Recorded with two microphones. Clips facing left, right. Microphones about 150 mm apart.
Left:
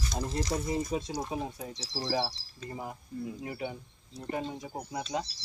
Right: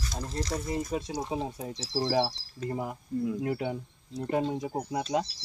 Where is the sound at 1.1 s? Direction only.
25° right (ahead or behind).